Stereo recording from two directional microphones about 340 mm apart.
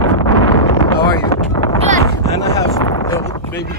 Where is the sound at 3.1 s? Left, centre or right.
Centre.